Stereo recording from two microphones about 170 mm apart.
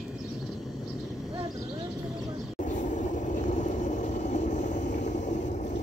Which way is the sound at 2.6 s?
45° left (ahead or behind).